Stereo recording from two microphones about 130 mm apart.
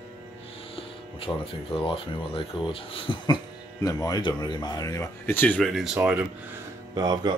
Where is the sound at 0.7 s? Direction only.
45° left (ahead or behind).